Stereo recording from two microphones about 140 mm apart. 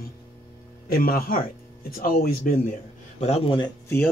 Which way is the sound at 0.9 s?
90° left.